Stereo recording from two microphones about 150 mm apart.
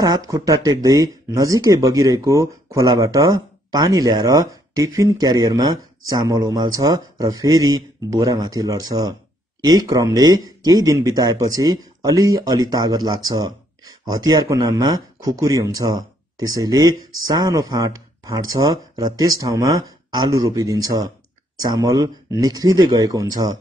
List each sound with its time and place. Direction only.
0.0 s speech: 25° right (ahead or behind)